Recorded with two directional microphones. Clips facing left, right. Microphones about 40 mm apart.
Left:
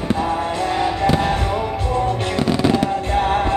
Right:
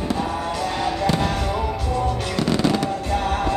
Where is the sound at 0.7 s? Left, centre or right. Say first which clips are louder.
Left 4 dB; centre.